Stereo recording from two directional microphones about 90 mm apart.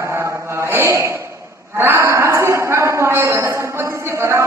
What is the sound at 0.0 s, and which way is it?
Mantra, 30° right (ahead or behind).